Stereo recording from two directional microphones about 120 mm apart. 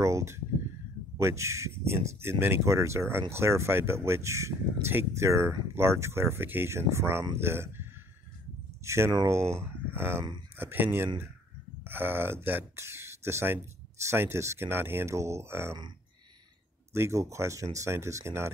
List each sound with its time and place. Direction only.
0.0 s a sound: 25° right (ahead or behind)
1.1 s speech: 25° right (ahead or behind)
8.8 s speech: 20° right (ahead or behind)
16.9 s speech: 25° right (ahead or behind)